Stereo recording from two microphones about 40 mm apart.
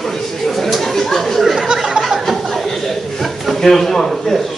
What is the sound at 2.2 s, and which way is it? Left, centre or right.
Chuckle, centre.